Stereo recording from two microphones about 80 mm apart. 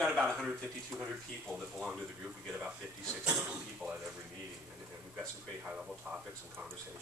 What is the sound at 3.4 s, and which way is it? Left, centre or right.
Speech, centre.